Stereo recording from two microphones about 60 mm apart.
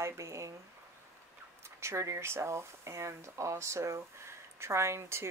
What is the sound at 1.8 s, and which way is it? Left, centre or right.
Speech, right.